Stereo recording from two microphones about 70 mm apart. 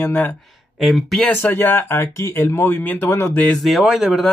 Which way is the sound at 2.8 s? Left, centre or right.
Left.